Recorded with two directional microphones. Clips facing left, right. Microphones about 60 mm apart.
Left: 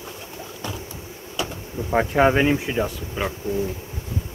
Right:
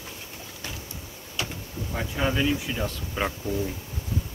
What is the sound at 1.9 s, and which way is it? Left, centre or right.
Speech, left.